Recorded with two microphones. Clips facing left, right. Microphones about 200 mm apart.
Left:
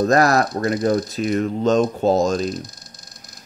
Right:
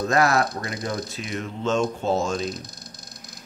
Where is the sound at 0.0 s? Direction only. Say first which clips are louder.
Left 5 dB; 40° left (ahead or behind).